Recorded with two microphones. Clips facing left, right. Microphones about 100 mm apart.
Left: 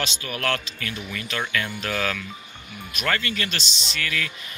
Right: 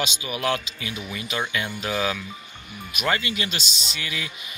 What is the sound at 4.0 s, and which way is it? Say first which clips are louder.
Speech: left 4 dB; 15° right (ahead or behind).